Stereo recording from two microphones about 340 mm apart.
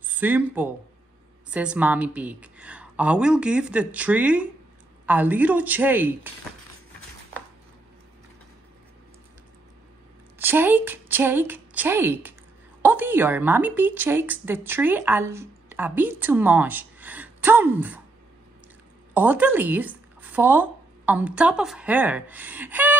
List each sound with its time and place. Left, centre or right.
0.1 s a woman's voice: centre
10.4 s a woman's voice: centre
19.1 s a woman's voice: centre